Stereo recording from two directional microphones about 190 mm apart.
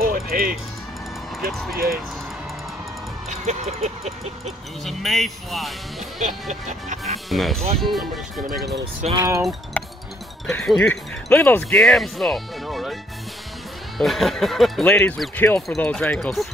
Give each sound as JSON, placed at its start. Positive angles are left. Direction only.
{"t": 0.0, "sound": "music", "side_deg": -50}
{"t": 1.5, "sound": "speech", "side_deg": 0}
{"t": 3.4, "sound": "speech", "side_deg": -35}
{"t": 4.8, "sound": "speech", "side_deg": 0}
{"t": 7.2, "sound": "speech", "side_deg": 0}
{"t": 9.1, "sound": "speech", "side_deg": -15}
{"t": 9.4, "sound": "speech", "side_deg": 0}
{"t": 13.9, "sound": "speech", "side_deg": 0}